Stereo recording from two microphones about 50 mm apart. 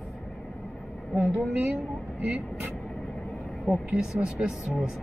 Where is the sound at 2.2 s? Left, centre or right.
Right.